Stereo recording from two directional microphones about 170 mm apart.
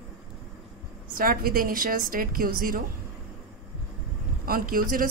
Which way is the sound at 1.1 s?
60° right (ahead or behind).